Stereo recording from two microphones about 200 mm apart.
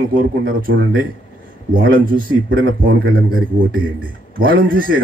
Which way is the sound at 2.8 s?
90° right.